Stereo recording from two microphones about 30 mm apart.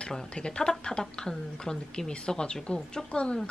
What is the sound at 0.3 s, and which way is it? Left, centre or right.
A woman's voice, left.